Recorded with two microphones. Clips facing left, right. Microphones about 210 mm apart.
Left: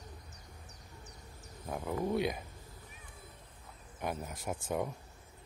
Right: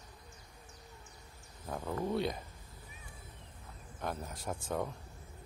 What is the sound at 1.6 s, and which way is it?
Insect, 10° left (ahead or behind).